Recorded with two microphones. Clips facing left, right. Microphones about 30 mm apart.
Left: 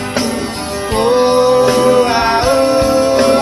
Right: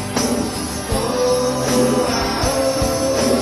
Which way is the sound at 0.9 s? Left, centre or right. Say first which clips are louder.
Left 7 dB; left.